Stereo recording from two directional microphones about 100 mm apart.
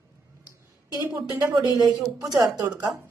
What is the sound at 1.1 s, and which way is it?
A woman's voice, 35° right (ahead or behind).